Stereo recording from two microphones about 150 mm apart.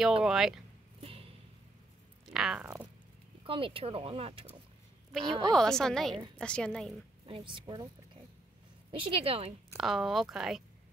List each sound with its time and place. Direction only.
0.2 s speech: 5° right (ahead or behind)
1.0 s a sound: 40° right (ahead or behind)
2.3 s speech: 5° right (ahead or behind)
3.4 s speech: 35° right (ahead or behind)
5.5 s speech: 5° left (ahead or behind)
7.2 s a woman's voice: 35° right (ahead or behind)
9.8 s speech: centre (ahead or behind)